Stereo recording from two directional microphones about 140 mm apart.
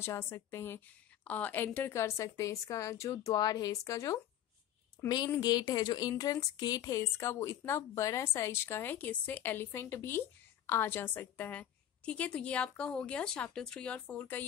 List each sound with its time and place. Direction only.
0.0 s a woman's voice: 20° left (ahead or behind)